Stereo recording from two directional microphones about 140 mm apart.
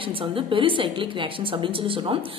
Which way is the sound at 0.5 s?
40° right (ahead or behind).